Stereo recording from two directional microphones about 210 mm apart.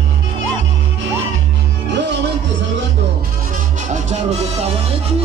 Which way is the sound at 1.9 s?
55° right (ahead or behind).